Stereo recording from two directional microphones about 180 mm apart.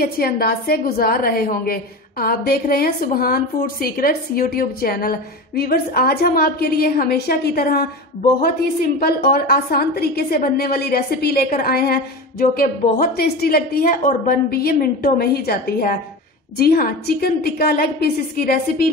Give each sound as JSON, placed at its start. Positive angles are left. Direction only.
{"t": 0.0, "sound": "a woman's voice", "side_deg": 55}
{"t": 9.0, "sound": "a woman's voice", "side_deg": 55}